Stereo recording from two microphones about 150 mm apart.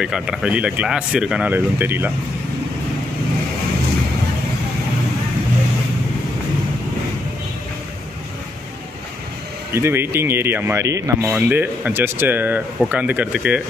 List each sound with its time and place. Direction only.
0.0 s speech: 5° right (ahead or behind)
9.8 s speech: 15° right (ahead or behind)
11.2 s speech: 10° right (ahead or behind)